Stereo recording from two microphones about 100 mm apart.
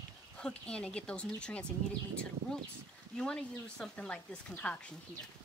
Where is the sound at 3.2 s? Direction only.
10° left (ahead or behind).